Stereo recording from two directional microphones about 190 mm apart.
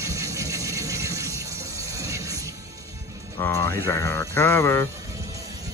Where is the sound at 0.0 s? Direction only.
15° right (ahead or behind).